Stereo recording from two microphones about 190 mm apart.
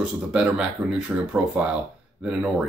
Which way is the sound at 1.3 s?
5° right (ahead or behind).